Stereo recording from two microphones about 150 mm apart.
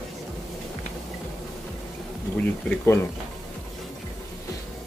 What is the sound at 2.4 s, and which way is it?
Speech, 10° left (ahead or behind).